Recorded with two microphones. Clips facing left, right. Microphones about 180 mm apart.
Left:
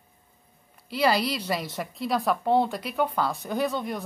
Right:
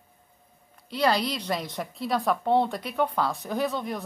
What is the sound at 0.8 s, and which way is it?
A woman's voice, 5° left (ahead or behind).